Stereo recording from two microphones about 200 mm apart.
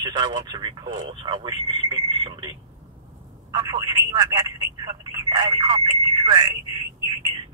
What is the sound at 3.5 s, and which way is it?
Speech, 20° right (ahead or behind).